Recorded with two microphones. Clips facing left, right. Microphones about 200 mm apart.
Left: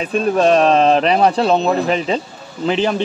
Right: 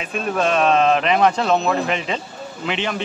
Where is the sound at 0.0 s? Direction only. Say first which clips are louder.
Left 7 dB; 35° left (ahead or behind).